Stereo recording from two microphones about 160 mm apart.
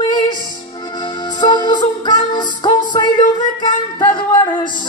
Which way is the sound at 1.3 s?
30° left (ahead or behind).